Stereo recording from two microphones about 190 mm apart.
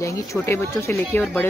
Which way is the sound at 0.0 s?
15° left (ahead or behind).